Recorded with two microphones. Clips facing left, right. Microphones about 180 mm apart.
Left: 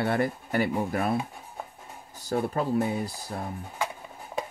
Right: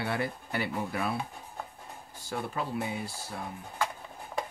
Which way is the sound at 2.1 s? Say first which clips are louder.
Left 7 dB; 45° left (ahead or behind).